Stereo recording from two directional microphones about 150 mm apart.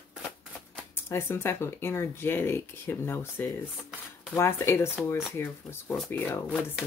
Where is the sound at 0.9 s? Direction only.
15° left (ahead or behind).